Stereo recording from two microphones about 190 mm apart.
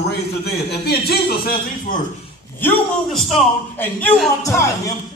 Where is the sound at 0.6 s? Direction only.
55° left (ahead or behind).